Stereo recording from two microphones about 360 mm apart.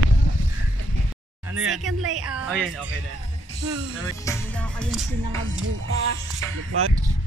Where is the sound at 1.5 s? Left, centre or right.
Centre.